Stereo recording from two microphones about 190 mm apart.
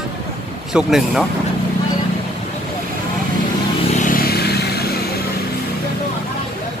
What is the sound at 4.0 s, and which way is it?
Vehicle, 50° left (ahead or behind).